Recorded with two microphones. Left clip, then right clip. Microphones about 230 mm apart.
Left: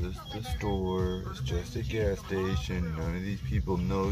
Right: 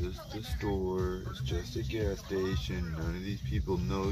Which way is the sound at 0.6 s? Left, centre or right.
Centre.